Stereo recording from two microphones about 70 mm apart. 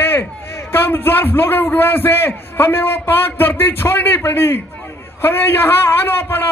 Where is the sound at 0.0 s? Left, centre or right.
Left.